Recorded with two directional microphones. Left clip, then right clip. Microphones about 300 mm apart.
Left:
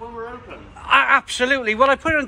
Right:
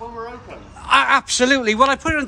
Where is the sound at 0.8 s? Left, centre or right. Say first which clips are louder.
Even; centre.